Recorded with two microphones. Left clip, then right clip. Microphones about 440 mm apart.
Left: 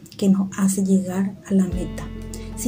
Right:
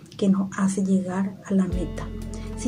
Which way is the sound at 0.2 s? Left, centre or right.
Right.